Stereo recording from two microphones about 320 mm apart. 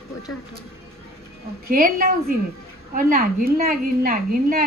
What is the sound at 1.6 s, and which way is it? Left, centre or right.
A woman's voice, right.